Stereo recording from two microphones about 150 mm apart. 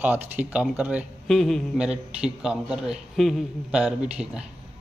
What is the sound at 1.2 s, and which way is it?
A man's voice, 5° left (ahead or behind).